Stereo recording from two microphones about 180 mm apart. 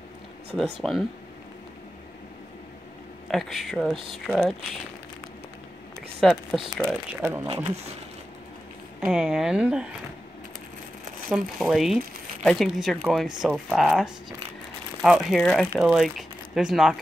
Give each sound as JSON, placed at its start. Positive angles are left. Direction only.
{"t": 0.7, "sound": "speech", "side_deg": 0}
{"t": 3.3, "sound": "speech", "side_deg": 0}
{"t": 6.2, "sound": "speech", "side_deg": 0}
{"t": 7.4, "sound": "speech", "side_deg": -25}
{"t": 9.0, "sound": "speech", "side_deg": -5}
{"t": 11.2, "sound": "speech", "side_deg": 0}